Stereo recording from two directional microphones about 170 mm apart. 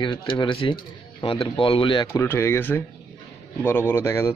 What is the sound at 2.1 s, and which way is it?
Speech, 15° left (ahead or behind).